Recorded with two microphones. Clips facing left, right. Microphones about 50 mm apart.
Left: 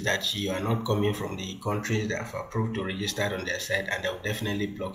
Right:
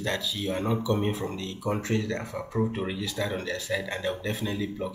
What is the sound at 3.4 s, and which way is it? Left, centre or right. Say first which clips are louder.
Speech: left 1 dB; centre.